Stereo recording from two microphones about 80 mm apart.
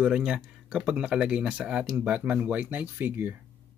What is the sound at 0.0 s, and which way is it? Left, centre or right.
Speech, centre.